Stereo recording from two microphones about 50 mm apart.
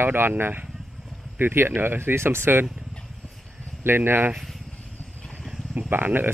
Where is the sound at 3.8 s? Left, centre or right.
Right.